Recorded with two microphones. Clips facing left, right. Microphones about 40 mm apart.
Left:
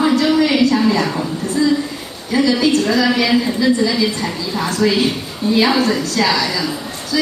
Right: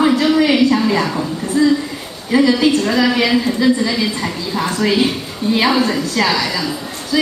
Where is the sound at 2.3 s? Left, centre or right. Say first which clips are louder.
Right 2 dB; centre.